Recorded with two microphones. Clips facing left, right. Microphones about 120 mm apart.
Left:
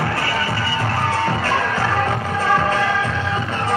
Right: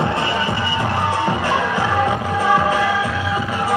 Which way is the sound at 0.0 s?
20° right (ahead or behind).